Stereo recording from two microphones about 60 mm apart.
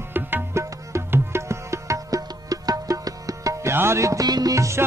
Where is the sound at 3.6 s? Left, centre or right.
Right.